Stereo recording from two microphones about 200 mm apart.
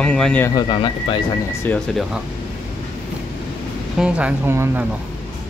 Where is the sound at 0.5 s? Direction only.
25° left (ahead or behind).